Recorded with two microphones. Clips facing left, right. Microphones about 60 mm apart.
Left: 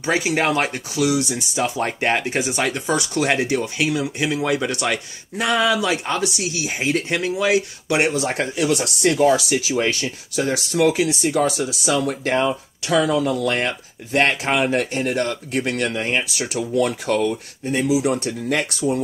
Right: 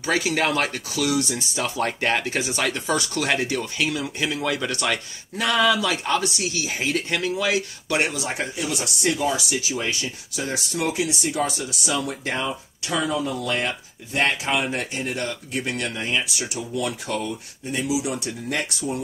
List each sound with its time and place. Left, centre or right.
0.0 s speech: left
8.3 s speech: left
8.6 s speech: left
9.7 s speech: left
12.9 s speech: left
17.6 s speech: left